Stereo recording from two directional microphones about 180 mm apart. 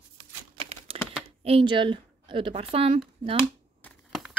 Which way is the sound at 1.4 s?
30° right (ahead or behind).